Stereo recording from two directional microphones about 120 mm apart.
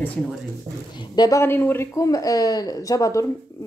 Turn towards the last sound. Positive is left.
turn(degrees=25)  # may be behind; listen again after turning